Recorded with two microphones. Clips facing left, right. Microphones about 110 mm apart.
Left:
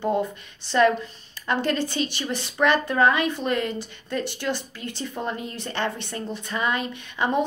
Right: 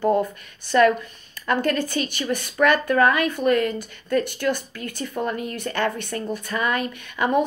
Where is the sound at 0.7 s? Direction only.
25° left (ahead or behind).